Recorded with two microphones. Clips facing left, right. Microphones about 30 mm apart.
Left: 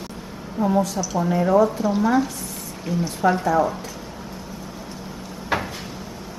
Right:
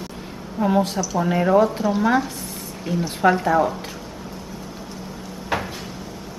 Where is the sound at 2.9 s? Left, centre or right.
Right.